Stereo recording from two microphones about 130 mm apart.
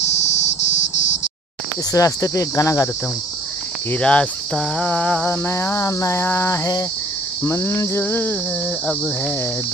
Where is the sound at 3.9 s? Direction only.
10° left (ahead or behind); by 6.8 s 25° left (ahead or behind).